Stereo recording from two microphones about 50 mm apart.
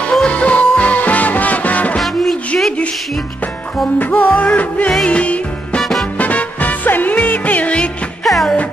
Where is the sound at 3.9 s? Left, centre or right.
Left.